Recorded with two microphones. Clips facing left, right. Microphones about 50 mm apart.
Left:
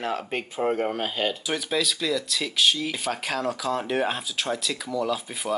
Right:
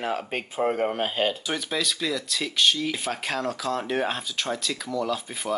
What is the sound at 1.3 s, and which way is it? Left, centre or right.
Speech, centre.